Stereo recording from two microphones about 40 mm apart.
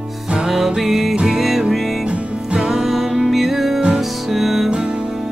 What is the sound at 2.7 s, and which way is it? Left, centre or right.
Music, centre.